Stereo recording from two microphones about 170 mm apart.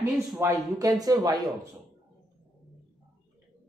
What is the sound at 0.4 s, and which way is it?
Speech, 15° right (ahead or behind).